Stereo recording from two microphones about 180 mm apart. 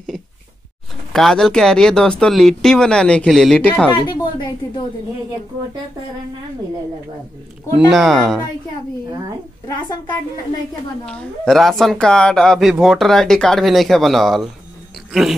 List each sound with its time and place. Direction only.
1.1 s a woman's voice: centre (ahead or behind)
3.9 s a sound: 25° left (ahead or behind)
7.9 s a woman's voice: centre (ahead or behind)
9.7 s a woman's voice: 20° left (ahead or behind)
11.1 s a woman's voice: 5° left (ahead or behind)